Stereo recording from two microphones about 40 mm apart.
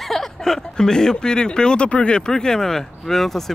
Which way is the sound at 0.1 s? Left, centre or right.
Centre.